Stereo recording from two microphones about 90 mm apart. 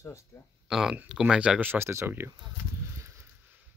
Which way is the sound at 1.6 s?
25° right (ahead or behind).